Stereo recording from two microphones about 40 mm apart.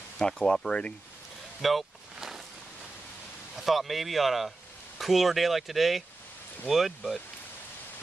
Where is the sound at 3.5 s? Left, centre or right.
Centre.